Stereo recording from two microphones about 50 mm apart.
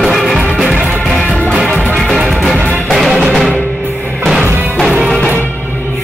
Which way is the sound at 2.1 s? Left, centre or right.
Centre.